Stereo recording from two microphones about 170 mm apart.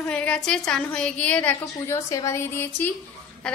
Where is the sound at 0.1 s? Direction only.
5° left (ahead or behind).